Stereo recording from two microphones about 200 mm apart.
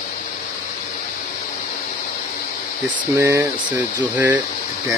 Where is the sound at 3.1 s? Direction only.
15° right (ahead or behind).